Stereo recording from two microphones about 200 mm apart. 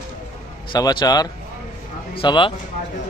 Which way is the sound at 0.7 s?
20° left (ahead or behind).